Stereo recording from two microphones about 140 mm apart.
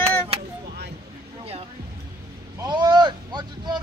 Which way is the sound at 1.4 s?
45° right (ahead or behind).